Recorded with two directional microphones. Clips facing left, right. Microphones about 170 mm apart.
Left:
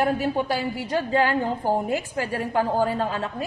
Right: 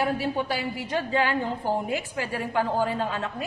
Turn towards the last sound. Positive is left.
turn(degrees=40)  # may be behind; listen again after turning